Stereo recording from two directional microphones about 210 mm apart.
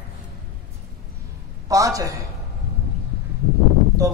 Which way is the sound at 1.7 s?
15° right (ahead or behind).